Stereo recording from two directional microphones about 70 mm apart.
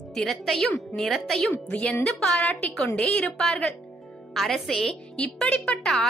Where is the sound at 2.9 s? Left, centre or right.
Centre.